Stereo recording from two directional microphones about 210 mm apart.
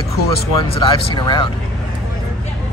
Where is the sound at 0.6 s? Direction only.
20° left (ahead or behind).